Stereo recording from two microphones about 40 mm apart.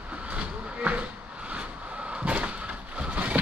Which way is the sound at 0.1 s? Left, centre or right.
Right.